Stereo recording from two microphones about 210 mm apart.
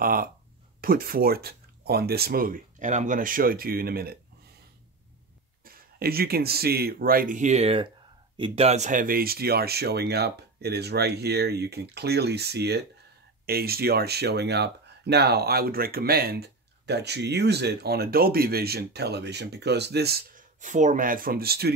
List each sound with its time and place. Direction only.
0.0 s speech: 45° right (ahead or behind)
5.7 s speech: 45° right (ahead or behind)